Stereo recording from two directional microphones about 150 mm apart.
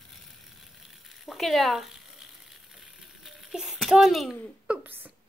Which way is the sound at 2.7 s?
Centre (ahead or behind).